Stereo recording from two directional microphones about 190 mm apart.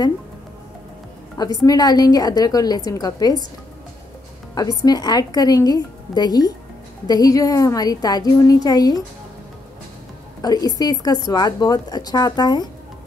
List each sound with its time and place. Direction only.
1.4 s a woman's voice: 20° left (ahead or behind)
4.6 s a woman's voice: 20° left (ahead or behind)
10.4 s a woman's voice: 20° left (ahead or behind)